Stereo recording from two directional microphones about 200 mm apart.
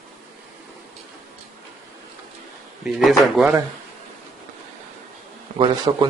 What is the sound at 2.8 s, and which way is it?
Speech, centre (ahead or behind).